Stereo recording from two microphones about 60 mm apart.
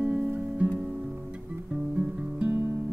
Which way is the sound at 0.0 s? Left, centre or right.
Centre.